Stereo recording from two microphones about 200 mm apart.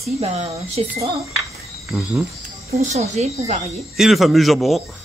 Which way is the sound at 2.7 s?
30° right (ahead or behind).